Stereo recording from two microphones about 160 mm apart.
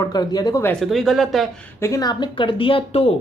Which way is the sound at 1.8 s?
20° left (ahead or behind).